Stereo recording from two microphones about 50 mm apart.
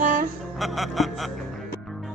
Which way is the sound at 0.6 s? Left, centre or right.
Centre.